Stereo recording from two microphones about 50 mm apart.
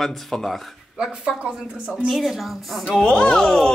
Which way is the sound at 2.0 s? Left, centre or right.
Centre.